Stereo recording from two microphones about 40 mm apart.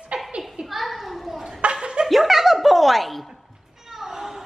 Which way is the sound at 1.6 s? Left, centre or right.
Right.